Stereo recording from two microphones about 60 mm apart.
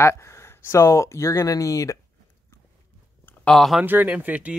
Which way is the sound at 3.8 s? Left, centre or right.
Right.